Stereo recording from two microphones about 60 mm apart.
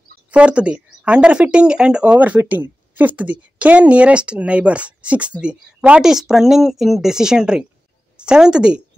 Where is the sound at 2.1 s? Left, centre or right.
Right.